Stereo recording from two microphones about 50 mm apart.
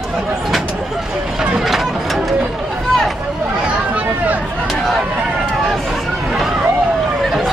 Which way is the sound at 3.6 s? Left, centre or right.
Centre.